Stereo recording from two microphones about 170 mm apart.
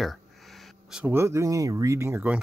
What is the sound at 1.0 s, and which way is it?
Speech, 15° right (ahead or behind).